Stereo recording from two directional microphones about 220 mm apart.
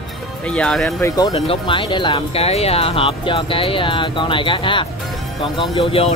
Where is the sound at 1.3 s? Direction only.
25° left (ahead or behind).